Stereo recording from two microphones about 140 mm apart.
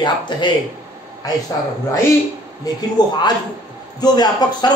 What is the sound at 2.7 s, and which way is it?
Speech, 25° left (ahead or behind).